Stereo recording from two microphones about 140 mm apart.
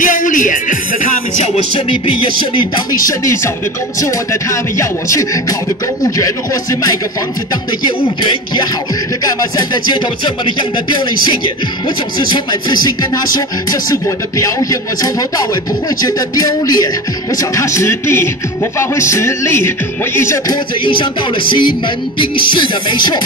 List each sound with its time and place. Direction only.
0.0 s music: 70° left (ahead or behind)
2.6 s speech: 30° left (ahead or behind)
9.2 s speech: 30° left (ahead or behind)
12.3 s speech: 30° left (ahead or behind)
20.8 s speech: 35° left (ahead or behind)